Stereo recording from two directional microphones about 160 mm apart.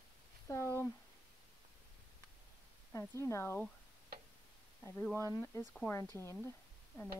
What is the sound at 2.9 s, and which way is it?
Speech, 20° left (ahead or behind).